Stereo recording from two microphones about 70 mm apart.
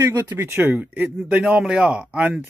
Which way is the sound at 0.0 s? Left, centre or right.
Right.